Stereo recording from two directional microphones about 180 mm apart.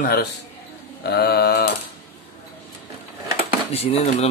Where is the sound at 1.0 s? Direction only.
60° left (ahead or behind).